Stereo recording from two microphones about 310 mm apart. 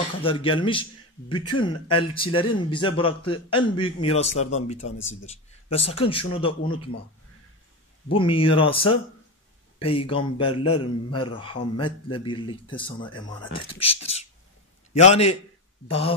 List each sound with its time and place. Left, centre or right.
0.2 s a man's voice: centre
4.7 s speech: left
5.2 s a man's voice: centre
8.1 s a man's voice: centre